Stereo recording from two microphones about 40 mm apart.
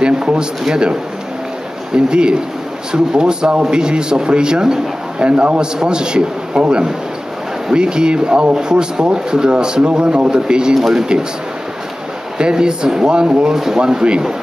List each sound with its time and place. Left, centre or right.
0.0 s a man's voice: right
2.0 s a man's voice: right
10.7 s speech: centre
12.4 s a man's voice: right